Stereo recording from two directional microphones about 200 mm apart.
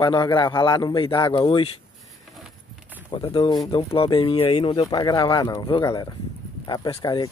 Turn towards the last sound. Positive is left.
turn(degrees=20)  # may be behind; listen again after turning